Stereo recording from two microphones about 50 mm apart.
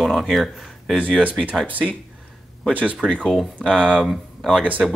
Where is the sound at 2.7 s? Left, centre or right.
Right.